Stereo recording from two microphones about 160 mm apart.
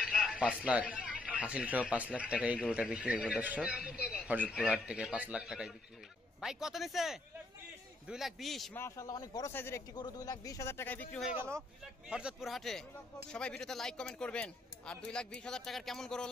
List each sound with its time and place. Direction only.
0.0 s speech: 5° right (ahead or behind)
8.7 s speech: 15° left (ahead or behind)
9.9 s speech: 25° left (ahead or behind)
11.2 s speech: 15° right (ahead or behind); by 16.3 s 5° left (ahead or behind)